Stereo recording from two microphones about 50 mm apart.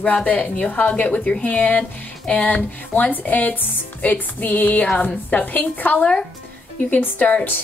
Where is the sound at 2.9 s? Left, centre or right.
Left.